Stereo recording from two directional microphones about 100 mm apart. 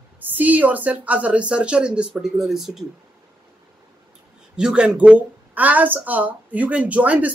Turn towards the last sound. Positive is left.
turn(degrees=-15)  # may be behind; listen again after turning